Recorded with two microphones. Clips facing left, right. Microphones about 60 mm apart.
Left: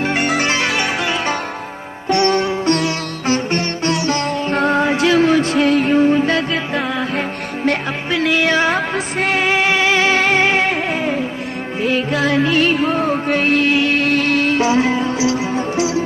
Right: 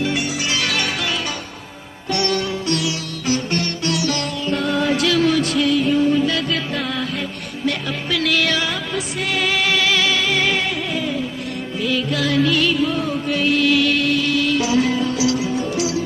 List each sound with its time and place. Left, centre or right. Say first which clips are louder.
0.0 s music: left 5 dB; left
0.6 s music: left 4 dB; left
2.0 s sitar: left 6 dB; left
7.2 s music: left 5 dB; left